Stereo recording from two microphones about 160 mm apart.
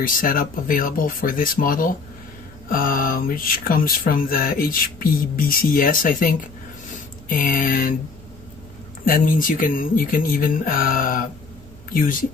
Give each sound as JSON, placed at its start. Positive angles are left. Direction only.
{"t": 0.0, "sound": "speech", "side_deg": 60}
{"t": 6.9, "sound": "a sound", "side_deg": 55}
{"t": 9.0, "sound": "speech", "side_deg": 60}